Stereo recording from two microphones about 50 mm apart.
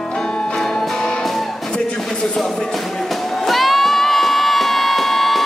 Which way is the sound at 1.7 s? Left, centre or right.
Centre.